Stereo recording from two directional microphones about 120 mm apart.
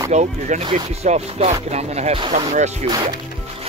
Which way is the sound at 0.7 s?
60° right (ahead or behind).